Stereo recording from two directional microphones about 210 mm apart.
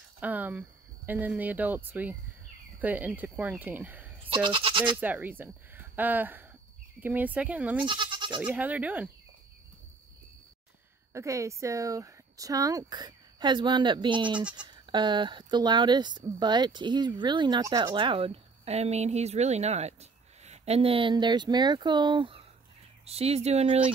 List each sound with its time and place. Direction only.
0.2 s speech: 10° right (ahead or behind)
4.2 s goat: 25° right (ahead or behind)
5.0 s speech: 10° right (ahead or behind)
7.8 s goat: 20° right (ahead or behind)
8.4 s speech: 5° right (ahead or behind)
11.1 s speech: 15° right (ahead or behind); by 23.9 s 30° right (ahead or behind)